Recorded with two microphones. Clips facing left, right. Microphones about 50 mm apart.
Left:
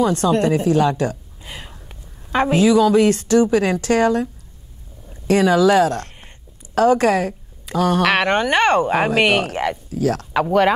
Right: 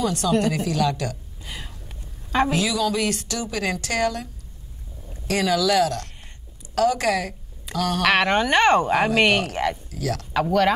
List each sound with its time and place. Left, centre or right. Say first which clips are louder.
0.0 s a woman's voice: left 5 dB; left
1.4 s a sound: left 1 dB; left
2.5 s a woman's voice: left 9 dB; left
8.0 s speech: right 2 dB; centre
8.9 s speech: left 2 dB; centre; by 10.2 s left
10.3 s speech: left 3 dB; centre